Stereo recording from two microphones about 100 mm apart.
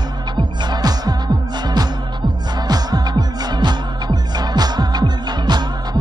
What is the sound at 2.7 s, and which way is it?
Music, 45° right (ahead or behind).